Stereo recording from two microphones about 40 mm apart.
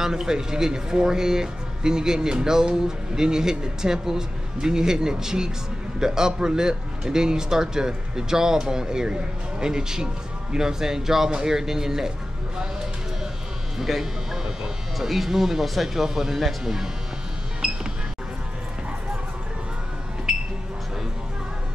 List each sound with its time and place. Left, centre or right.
0.0 s speech: centre
13.7 s speech: centre
17.6 s music: centre